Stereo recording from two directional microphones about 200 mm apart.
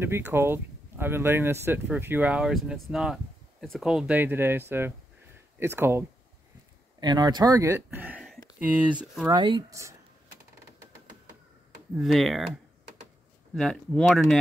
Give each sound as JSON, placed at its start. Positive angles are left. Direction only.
{"t": 0.0, "sound": "speech", "side_deg": -10}
{"t": 9.3, "sound": "speech", "side_deg": -20}
{"t": 12.0, "sound": "speech", "side_deg": 0}
{"t": 13.6, "sound": "speech", "side_deg": 5}